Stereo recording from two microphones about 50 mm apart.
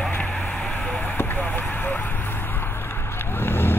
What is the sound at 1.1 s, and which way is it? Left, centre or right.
Vehicle, left.